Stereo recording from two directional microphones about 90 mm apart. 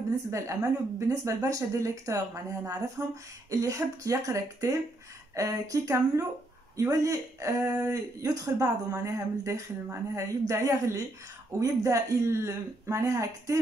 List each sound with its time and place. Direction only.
0.3 s speech: 35° right (ahead or behind)